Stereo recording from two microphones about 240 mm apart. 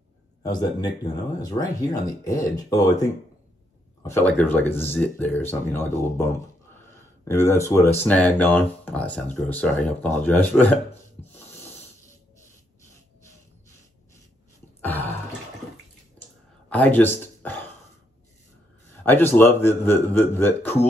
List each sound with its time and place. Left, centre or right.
0.4 s speech: centre
14.8 s a sound: centre
16.6 s speech: centre
19.0 s speech: centre